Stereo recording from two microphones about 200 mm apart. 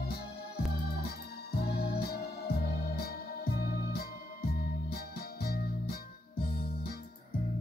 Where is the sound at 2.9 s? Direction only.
50° left (ahead or behind).